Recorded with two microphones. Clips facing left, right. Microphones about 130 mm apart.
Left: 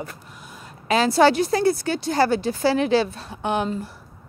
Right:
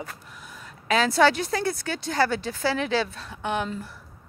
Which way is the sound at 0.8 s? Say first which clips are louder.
Left 3 dB; 30° left (ahead or behind).